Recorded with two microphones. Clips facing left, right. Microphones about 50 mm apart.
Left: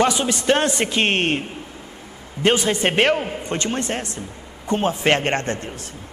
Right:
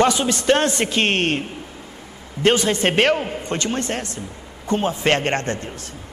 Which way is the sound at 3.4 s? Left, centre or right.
Left.